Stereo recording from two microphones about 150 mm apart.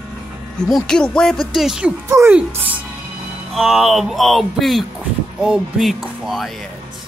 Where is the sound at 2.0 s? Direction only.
20° right (ahead or behind); by 6.5 s centre (ahead or behind).